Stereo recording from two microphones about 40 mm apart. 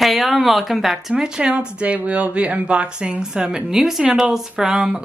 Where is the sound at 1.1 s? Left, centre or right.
Centre.